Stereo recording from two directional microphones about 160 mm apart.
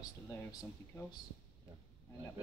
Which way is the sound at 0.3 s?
20° left (ahead or behind).